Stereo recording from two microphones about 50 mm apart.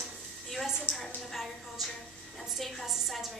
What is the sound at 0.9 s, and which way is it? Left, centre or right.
A woman's voice, centre.